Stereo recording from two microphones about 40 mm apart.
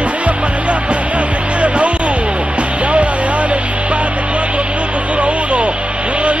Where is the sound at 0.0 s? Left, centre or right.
Right.